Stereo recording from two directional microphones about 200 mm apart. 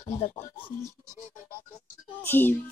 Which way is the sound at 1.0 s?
15° right (ahead or behind).